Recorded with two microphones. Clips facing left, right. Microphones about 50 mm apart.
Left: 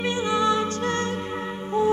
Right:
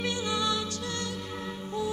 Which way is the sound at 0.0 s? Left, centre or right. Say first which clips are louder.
Left 7 dB; left.